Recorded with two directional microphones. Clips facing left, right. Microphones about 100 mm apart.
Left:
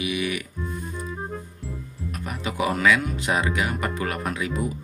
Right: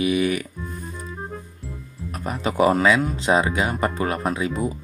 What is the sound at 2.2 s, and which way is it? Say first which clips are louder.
Speech: right 7 dB; 35° right (ahead or behind).